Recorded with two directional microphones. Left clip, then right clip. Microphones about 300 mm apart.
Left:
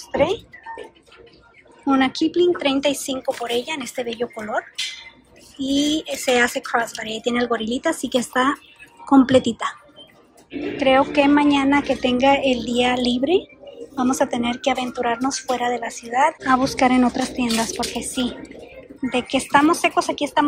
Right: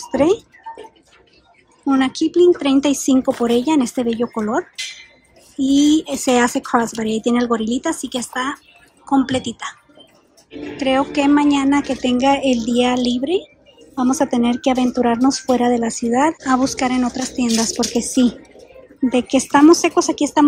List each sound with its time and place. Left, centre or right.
0.0 s speech: centre
1.9 s speech: centre
5.6 s speech: centre
10.8 s speech: centre